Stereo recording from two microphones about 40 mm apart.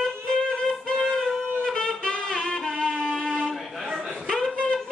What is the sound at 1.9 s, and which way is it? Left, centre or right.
Music, left.